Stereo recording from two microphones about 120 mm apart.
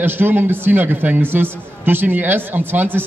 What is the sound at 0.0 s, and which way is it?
A man's voice, 15° right (ahead or behind).